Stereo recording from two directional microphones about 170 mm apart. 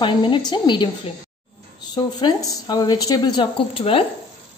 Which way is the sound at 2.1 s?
25° left (ahead or behind).